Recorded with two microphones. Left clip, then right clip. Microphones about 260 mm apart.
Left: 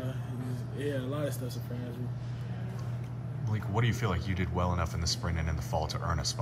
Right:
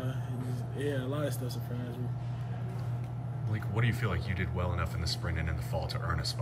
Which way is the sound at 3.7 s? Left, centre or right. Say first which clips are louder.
Left 2 dB; centre.